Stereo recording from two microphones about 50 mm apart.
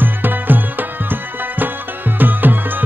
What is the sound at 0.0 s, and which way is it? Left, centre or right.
Music, right.